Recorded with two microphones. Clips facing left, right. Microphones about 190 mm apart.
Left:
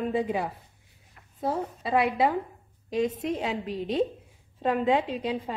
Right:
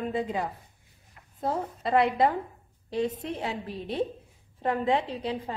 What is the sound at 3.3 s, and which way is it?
A woman's voice, 20° left (ahead or behind).